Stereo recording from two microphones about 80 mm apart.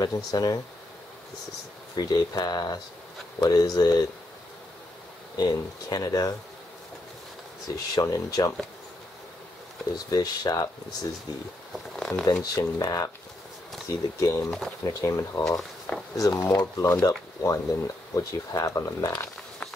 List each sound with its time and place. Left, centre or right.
0.0 s speech: left
2.0 s speech: left
5.4 s speech: left
7.7 s speech: left
9.9 s speech: left
11.7 s speech: centre
12.5 s speech: left
13.8 s speech: left